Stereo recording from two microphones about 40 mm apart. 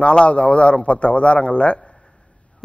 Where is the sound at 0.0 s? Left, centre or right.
Left.